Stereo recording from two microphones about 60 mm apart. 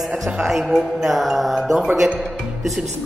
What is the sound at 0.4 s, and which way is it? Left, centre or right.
Speech, centre.